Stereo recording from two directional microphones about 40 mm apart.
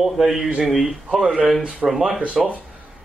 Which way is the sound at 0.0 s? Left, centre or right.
Centre.